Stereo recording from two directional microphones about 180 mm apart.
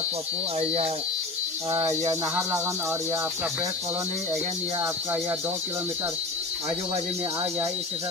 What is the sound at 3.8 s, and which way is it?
Speech, 35° right (ahead or behind).